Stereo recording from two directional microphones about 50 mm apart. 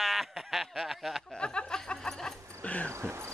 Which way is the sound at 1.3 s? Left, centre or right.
Centre.